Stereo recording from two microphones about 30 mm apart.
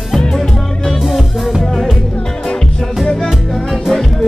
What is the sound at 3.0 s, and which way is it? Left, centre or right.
Music, centre.